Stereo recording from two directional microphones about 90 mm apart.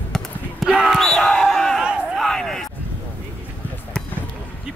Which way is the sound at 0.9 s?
5° left (ahead or behind).